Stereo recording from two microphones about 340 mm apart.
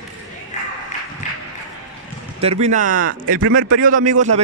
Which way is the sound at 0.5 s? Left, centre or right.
Left.